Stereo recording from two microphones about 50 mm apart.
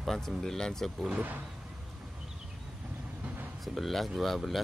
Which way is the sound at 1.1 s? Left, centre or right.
Right.